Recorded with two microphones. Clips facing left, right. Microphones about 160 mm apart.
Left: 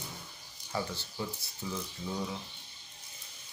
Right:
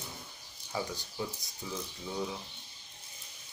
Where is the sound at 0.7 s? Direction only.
15° right (ahead or behind).